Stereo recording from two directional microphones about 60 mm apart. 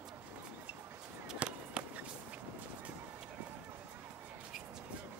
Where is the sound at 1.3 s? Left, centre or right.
Centre.